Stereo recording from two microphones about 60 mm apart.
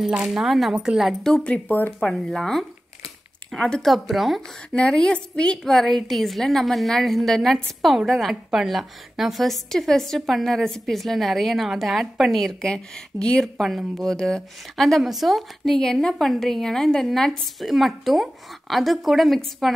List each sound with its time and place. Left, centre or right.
0.2 s speech: centre
1.3 s a woman's voice: centre
3.8 s a woman's voice: centre
4.7 s a woman's voice: centre
5.7 s a woman's voice: centre
13.6 s a woman's voice: centre
14.1 s a woman's voice: centre